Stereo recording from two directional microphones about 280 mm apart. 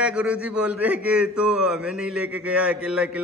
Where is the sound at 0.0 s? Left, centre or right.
Centre.